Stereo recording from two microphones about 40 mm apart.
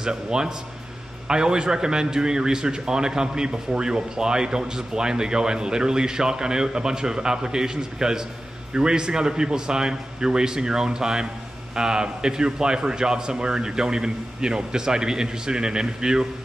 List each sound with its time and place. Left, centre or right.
0.0 s a man's voice: centre